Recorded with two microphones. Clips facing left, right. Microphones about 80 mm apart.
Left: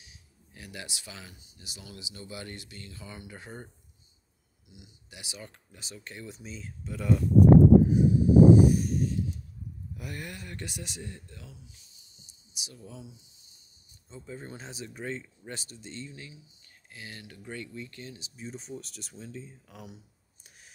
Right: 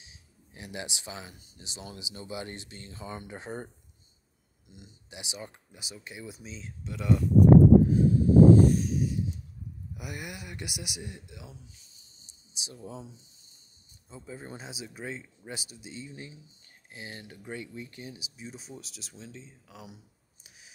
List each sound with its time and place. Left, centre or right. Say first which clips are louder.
0.0 s a sound: right 1 dB; right
1.6 s speech: right 3 dB; right
4.6 s speech: right 2 dB; right
5.1 s speech: right 3 dB; right
6.4 s speech: left 1 dB; centre
7.9 s a sound: even; centre
9.9 s speech: even; centre
11.9 s a sound: left 1 dB; right
14.0 s speech: even; centre
16.3 s speech: right 1 dB; right
18.3 s speech: left 3 dB; centre
20.4 s clicking: even; centre